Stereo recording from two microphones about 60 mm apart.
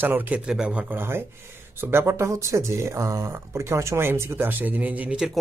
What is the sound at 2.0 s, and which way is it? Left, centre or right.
Speech, right.